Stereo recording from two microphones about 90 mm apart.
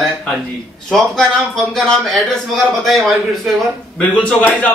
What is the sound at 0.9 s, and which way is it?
A man's voice, 5° left (ahead or behind).